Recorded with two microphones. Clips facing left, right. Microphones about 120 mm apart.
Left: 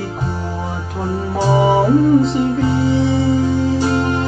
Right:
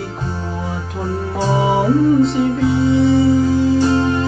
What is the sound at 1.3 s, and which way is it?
Music, 15° left (ahead or behind).